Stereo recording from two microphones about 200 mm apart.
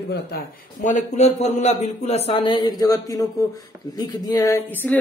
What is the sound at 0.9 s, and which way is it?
Speech, 35° left (ahead or behind).